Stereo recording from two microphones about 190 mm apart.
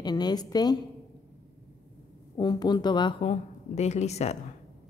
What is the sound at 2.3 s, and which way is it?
A woman's voice, 20° left (ahead or behind).